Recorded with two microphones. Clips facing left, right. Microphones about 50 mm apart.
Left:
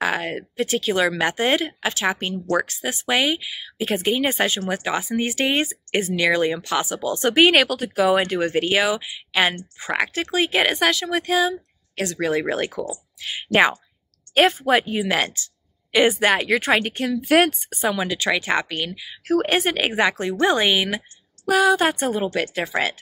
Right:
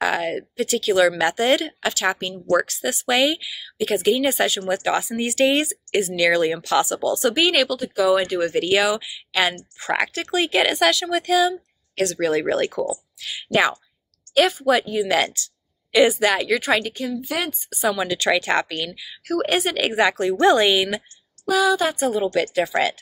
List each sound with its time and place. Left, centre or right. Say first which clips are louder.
0.0 s speech: right 2 dB; left
7.9 s speech: even; left
13.2 s a woman's voice: left 2 dB; left
17.1 s speech: left 12 dB; left
17.8 s speech: right 1 dB; left
18.9 s speech: left 4 dB; left
21.5 s a woman's voice: left 2 dB; left